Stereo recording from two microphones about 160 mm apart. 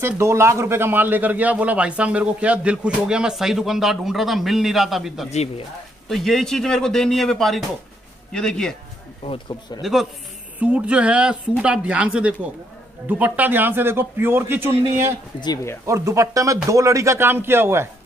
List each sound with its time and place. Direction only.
0.0 s a man's voice: 15° right (ahead or behind); by 8.7 s 5° left (ahead or behind)
9.2 s speech: 35° left (ahead or behind)
9.8 s a man's voice: centre (ahead or behind)
15.4 s speech: 20° left (ahead or behind)
15.9 s a man's voice: 20° right (ahead or behind)